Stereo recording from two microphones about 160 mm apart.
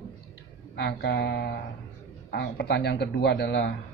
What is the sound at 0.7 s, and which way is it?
A man's voice, 90° left.